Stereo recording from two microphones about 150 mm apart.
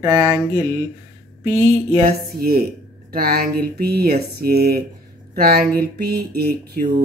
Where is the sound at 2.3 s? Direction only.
90° right.